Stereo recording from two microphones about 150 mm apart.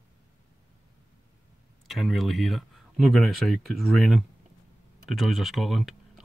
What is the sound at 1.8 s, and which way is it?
Speech, centre (ahead or behind).